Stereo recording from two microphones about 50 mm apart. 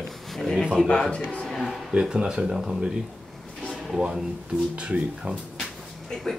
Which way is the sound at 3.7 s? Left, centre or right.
Centre.